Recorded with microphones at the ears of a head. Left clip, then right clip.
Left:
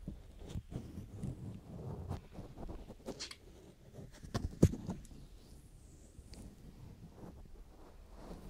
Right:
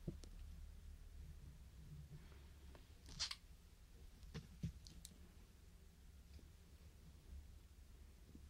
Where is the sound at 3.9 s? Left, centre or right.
Left.